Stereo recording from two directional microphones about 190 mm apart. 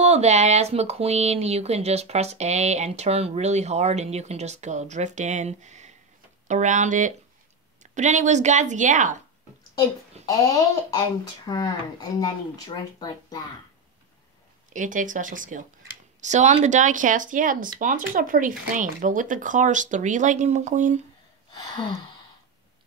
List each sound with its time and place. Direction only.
0.0 s speech: 35° right (ahead or behind)
10.2 s speech: 15° left (ahead or behind)
14.7 s speech: 40° right (ahead or behind)